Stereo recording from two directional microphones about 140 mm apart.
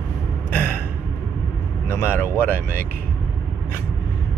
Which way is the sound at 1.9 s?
20° left (ahead or behind).